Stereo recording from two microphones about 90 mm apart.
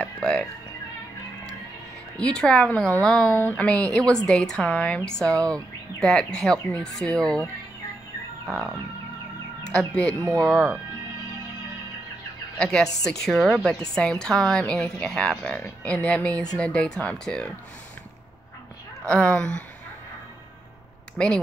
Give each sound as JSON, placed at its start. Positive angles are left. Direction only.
{"t": 0.0, "sound": "music", "side_deg": 10}
{"t": 2.1, "sound": "speech", "side_deg": 10}
{"t": 9.7, "sound": "speech", "side_deg": 10}
{"t": 12.5, "sound": "a woman's voice", "side_deg": 10}
{"t": 19.0, "sound": "speech", "side_deg": 10}
{"t": 21.2, "sound": "a woman's voice", "side_deg": 5}